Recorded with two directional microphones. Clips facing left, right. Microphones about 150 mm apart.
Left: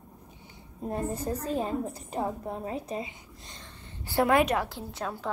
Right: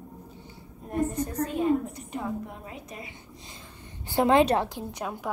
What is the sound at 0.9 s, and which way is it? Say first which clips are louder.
A woman's voice: right 2 dB; 30° left (ahead or behind).